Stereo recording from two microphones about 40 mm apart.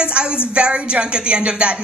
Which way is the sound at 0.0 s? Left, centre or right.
Right.